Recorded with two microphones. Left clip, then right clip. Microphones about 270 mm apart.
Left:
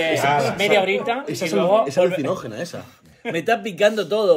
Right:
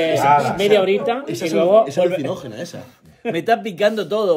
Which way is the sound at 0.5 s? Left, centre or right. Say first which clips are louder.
Right 3 dB; centre.